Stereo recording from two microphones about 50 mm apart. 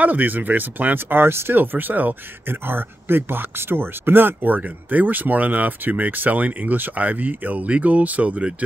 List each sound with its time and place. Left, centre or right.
0.0 s speech: right